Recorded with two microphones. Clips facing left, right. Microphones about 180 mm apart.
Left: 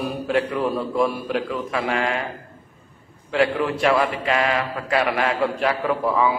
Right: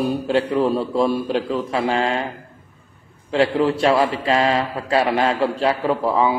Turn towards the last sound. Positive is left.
turn(degrees=-30)  # may be behind; listen again after turning